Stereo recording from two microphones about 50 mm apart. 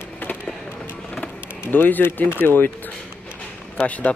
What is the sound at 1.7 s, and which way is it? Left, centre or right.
Speech, left.